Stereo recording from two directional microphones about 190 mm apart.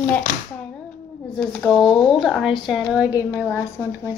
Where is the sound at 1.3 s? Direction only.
5° left (ahead or behind).